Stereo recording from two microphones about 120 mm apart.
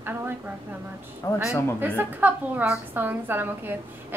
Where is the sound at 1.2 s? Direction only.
30° left (ahead or behind).